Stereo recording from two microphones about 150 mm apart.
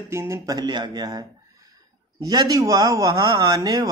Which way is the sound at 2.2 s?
25° right (ahead or behind).